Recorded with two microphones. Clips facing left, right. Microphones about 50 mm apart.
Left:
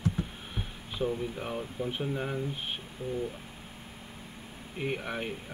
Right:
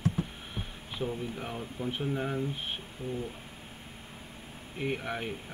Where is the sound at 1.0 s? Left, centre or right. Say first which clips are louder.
Left 3 dB; centre.